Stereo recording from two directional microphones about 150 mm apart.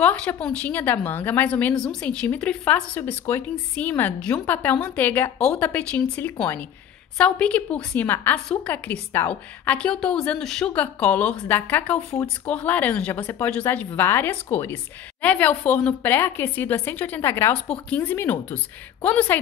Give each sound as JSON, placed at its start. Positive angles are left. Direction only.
{"t": 0.0, "sound": "a woman's voice", "side_deg": 10}